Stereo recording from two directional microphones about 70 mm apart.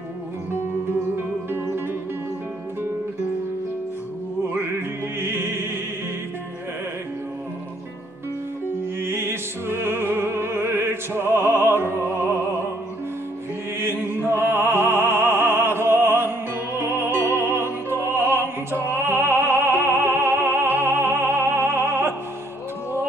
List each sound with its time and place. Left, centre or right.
5.2 s music: right
9.0 s music: right
13.7 s opera: right
16.7 s music: right